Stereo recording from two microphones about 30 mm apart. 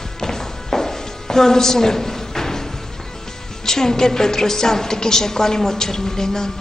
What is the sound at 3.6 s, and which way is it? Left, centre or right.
A woman's voice, centre.